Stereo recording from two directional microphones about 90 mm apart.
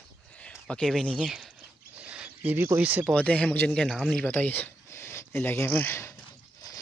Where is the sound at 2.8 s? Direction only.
15° right (ahead or behind).